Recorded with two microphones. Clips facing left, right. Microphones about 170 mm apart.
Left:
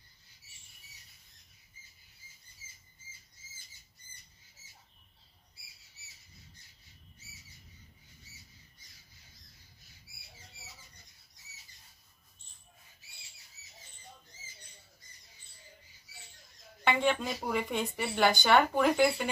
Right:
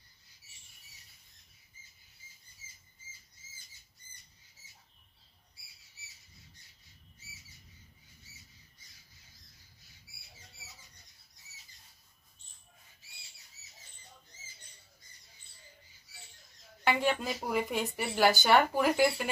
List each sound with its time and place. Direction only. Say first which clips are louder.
16.8 s speech: left 1 dB; 5° right (ahead or behind)